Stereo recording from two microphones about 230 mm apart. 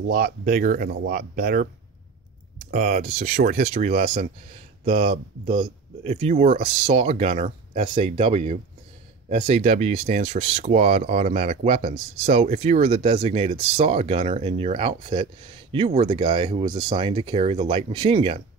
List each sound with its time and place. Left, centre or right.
0.1 s speech: right
2.7 s speech: right